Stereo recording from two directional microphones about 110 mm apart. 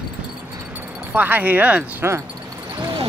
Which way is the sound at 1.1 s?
15° right (ahead or behind).